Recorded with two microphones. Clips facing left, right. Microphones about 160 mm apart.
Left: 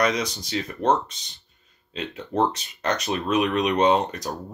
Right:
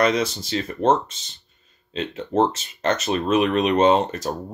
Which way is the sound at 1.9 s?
25° right (ahead or behind).